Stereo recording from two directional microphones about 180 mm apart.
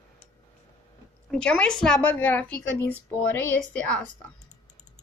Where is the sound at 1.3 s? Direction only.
5° left (ahead or behind).